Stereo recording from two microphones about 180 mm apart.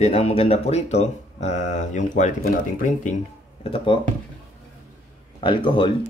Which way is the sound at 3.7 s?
30° left (ahead or behind).